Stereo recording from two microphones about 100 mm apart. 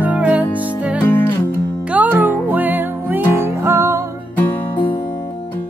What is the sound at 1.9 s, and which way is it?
Music, 15° right (ahead or behind).